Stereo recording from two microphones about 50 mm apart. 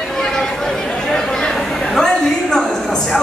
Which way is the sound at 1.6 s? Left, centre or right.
Centre.